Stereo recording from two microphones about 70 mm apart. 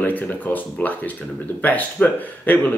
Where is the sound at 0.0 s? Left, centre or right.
Left.